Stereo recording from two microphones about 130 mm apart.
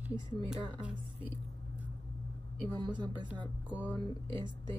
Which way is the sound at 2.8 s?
35° right (ahead or behind).